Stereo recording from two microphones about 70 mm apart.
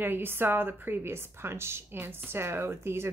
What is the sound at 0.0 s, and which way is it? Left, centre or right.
A woman's voice, right.